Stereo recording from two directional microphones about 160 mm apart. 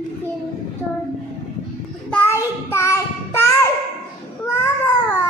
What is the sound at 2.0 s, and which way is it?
Child singing, 15° left (ahead or behind).